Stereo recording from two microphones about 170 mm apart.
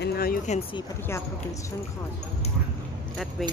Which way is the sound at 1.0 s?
15° left (ahead or behind).